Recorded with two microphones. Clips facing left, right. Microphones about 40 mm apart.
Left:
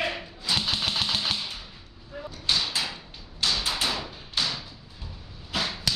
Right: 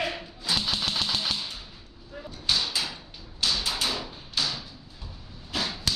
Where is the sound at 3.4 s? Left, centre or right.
Centre.